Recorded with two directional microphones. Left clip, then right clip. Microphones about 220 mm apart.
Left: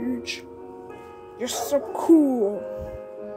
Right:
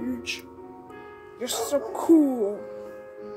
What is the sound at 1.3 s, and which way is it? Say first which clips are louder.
Music: left 2 dB; 15° left (ahead or behind).